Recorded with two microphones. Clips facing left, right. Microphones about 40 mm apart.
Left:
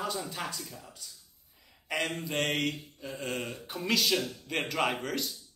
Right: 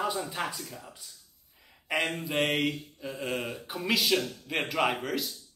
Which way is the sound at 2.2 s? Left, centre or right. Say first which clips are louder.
Right 3 dB; centre.